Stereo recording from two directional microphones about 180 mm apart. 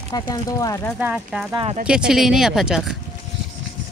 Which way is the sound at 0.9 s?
5° right (ahead or behind).